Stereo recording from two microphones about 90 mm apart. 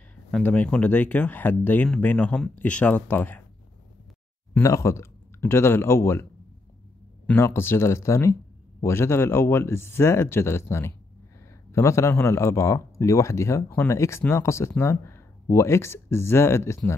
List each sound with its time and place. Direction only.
0.4 s speech: 20° left (ahead or behind)
4.6 s speech: 35° left (ahead or behind)
7.3 s speech: 30° left (ahead or behind)